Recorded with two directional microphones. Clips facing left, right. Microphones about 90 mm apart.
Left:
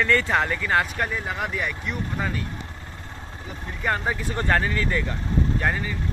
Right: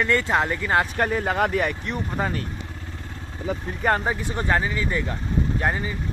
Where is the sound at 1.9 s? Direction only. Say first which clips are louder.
Right 2 dB; 35° right (ahead or behind).